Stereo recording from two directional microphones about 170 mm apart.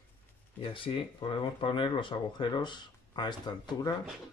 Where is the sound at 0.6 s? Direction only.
30° left (ahead or behind).